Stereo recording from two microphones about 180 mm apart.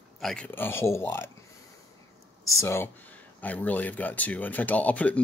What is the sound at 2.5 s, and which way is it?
Speech, 15° left (ahead or behind).